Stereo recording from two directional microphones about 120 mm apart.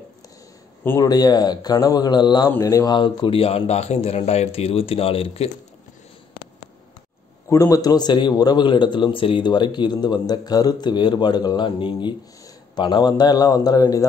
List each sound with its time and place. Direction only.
0.8 s a man's voice: 30° left (ahead or behind); by 5.5 s 55° left (ahead or behind)
7.4 s a man's voice: 25° left (ahead or behind)